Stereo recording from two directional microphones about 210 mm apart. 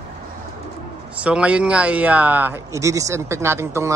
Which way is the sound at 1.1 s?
5° right (ahead or behind).